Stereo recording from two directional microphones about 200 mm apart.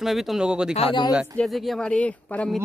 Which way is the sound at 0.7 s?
25° left (ahead or behind).